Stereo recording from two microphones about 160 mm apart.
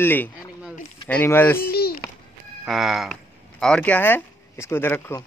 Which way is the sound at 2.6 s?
Centre (ahead or behind).